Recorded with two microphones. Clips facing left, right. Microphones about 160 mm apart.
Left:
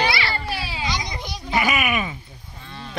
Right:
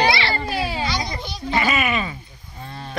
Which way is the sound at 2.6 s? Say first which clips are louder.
Right 3 dB; 45° right (ahead or behind).